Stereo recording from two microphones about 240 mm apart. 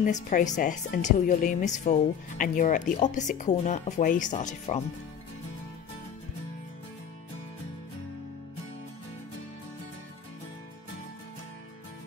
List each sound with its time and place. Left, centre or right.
0.0 s speech: left